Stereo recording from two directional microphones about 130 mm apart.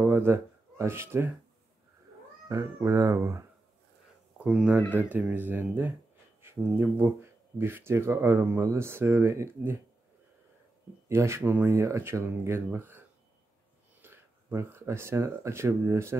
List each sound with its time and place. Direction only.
0.0 s speech: 20° right (ahead or behind)
2.4 s speech: 25° right (ahead or behind)
4.4 s speech: 10° right (ahead or behind)
11.1 s speech: 20° right (ahead or behind)
14.0 s speech: 20° right (ahead or behind)